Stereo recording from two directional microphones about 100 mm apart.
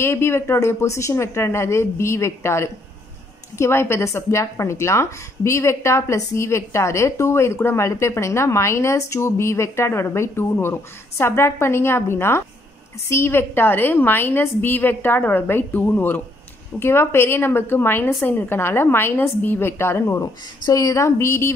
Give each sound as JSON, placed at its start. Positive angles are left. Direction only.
{"t": 0.0, "sound": "speech", "side_deg": 25}